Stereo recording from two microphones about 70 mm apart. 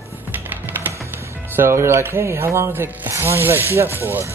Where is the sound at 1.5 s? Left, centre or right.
Right.